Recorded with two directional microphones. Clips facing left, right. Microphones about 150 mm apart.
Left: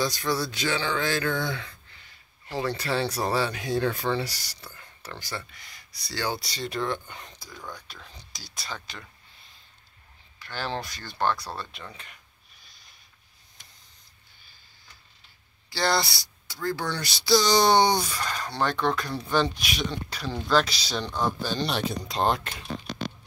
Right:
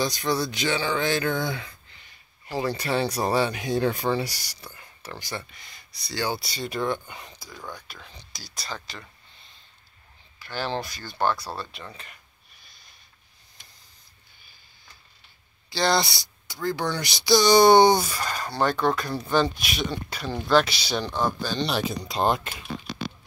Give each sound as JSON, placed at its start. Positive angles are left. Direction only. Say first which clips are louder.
{"t": 0.0, "sound": "speech", "louder": "right 2 dB", "side_deg": -20}
{"t": 6.2, "sound": "speech", "louder": "right 1 dB", "side_deg": -10}
{"t": 15.7, "sound": "speech", "louder": "right 2 dB", "side_deg": -25}
{"t": 19.6, "sound": "speech", "louder": "right 1 dB", "side_deg": -50}
{"t": 19.9, "sound": "speech", "louder": "right 2 dB", "side_deg": -5}